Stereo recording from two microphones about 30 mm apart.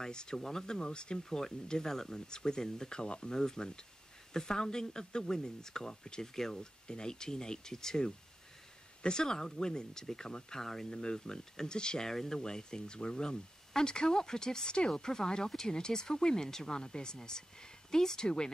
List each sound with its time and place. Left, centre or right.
0.0 s speech: left
1.3 s speech: centre
6.6 s speech: left
10.6 s speech: centre
10.9 s speech: left
12.1 s speech: centre